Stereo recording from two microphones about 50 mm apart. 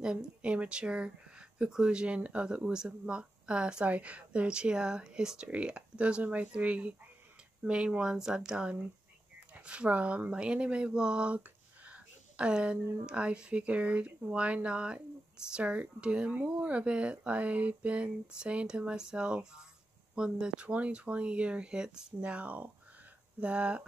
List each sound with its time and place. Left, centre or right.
0.0 s speech: centre
5.5 s speech: right